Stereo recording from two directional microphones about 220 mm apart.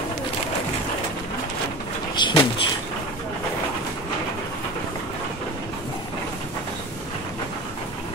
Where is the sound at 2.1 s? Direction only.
20° left (ahead or behind).